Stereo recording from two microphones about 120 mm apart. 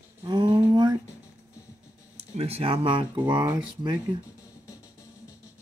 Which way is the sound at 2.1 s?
55° right (ahead or behind).